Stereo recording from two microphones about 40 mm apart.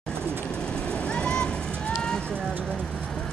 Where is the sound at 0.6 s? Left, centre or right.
Left.